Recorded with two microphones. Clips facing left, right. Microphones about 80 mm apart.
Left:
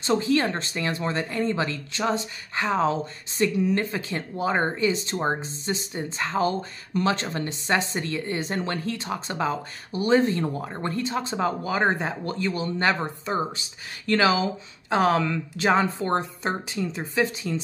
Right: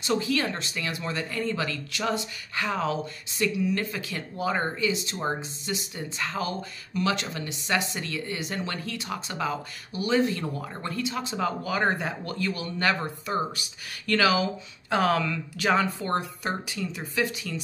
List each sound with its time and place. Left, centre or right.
0.0 s speech: left